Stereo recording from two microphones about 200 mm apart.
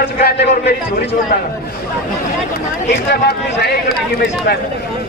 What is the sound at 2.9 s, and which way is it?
Speech, 55° left (ahead or behind).